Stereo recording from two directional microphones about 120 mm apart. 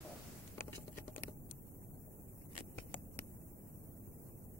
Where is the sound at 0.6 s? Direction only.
20° left (ahead or behind).